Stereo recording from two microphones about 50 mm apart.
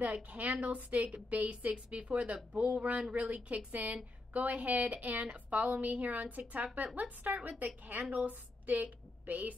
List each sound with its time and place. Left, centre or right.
0.0 s a woman's voice: right